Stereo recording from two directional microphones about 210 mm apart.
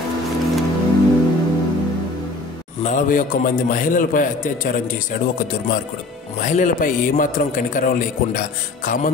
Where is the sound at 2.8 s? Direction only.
40° left (ahead or behind).